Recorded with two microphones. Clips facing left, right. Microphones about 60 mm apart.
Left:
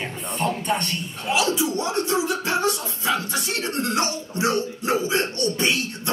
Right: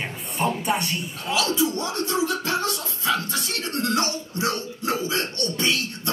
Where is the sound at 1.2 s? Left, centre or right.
Left.